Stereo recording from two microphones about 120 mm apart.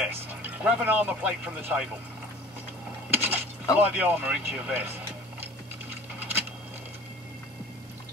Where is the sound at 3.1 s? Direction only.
15° right (ahead or behind).